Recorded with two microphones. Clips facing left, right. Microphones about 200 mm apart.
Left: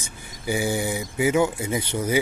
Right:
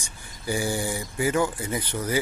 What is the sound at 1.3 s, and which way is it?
Speech, 10° left (ahead or behind).